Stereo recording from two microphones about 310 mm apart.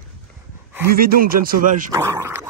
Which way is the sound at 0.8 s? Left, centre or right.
Right.